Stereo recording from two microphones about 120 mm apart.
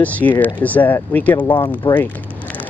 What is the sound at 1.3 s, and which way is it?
Speech, 40° left (ahead or behind).